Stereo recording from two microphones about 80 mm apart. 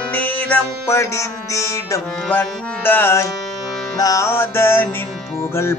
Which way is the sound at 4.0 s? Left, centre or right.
Left.